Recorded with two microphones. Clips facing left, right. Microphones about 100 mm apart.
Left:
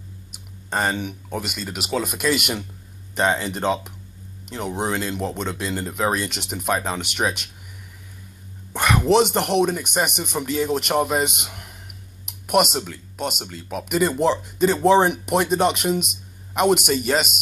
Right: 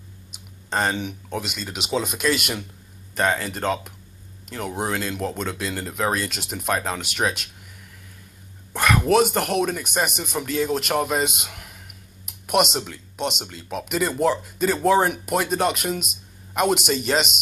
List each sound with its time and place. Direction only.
0.7 s speech: 10° left (ahead or behind)
3.2 s speech: 20° left (ahead or behind)
8.7 s speech: 15° left (ahead or behind)
12.7 s speech: centre (ahead or behind)
13.2 s speech: 10° left (ahead or behind)